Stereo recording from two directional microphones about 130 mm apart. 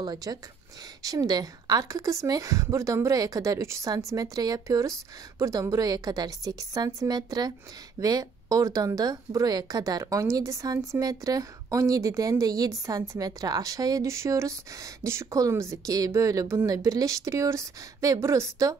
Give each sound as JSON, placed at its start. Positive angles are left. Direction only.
{"t": 0.0, "sound": "speech", "side_deg": -30}